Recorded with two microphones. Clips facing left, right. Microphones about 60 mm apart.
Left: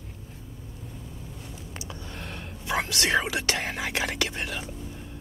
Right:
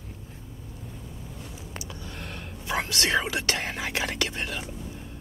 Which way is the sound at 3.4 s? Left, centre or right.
Left.